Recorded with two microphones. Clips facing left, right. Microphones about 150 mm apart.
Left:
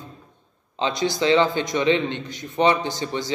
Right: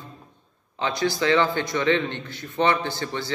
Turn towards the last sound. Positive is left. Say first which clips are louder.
# left 2 dB
turn(degrees=15)  # may be behind; listen again after turning